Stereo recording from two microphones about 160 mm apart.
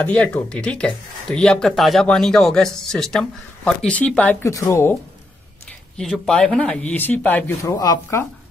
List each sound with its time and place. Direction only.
0.0 s speech: 10° left (ahead or behind)
5.9 s speech: 5° left (ahead or behind)
7.7 s speech: 25° left (ahead or behind)